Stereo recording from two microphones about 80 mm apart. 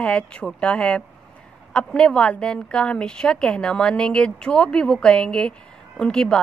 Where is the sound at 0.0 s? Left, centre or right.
Centre.